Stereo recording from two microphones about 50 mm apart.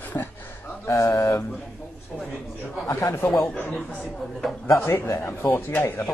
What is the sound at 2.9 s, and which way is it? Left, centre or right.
Speech, left.